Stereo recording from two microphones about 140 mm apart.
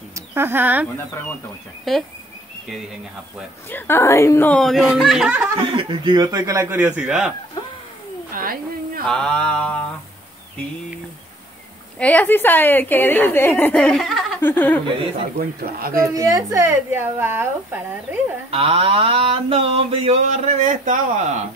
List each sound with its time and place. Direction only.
0.1 s speech: 15° right (ahead or behind)
1.9 s speech: centre (ahead or behind)
3.7 s a woman's voice: 15° left (ahead or behind)
4.5 s speech: 5° left (ahead or behind)
5.6 s speech: 40° right (ahead or behind); by 6.9 s 20° right (ahead or behind)
7.0 s speech: 5° right (ahead or behind)
8.3 s a sound: 90° right
9.0 s a woman's voice: 5° left (ahead or behind)
12.0 s a woman's voice: 10° left (ahead or behind)
14.4 s a woman's voice: 15° left (ahead or behind)
15.3 s speech: 90° right
16.1 s speech: 25° right (ahead or behind)
18.5 s a sound: 40° right (ahead or behind)